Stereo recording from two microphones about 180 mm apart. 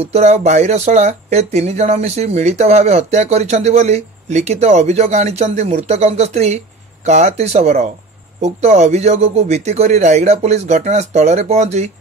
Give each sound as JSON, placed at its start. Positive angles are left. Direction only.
{"t": 0.0, "sound": "speech", "side_deg": -35}